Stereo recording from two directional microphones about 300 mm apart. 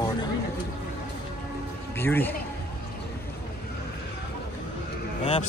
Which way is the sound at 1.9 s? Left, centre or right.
Centre.